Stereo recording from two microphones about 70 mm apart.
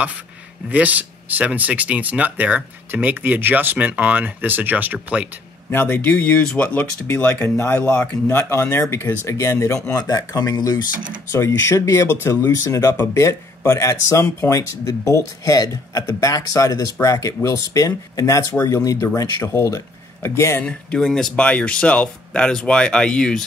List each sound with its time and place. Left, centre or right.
0.7 s speech: right
5.7 s speech: left
9.8 s speech: left
11.3 s speech: left
20.6 s speech: centre
21.4 s speech: centre